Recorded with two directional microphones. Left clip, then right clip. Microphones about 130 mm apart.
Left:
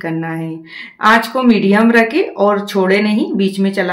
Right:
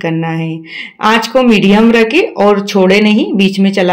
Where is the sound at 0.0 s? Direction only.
20° right (ahead or behind).